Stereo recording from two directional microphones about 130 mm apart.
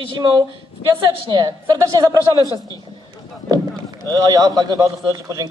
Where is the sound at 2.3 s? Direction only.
25° left (ahead or behind).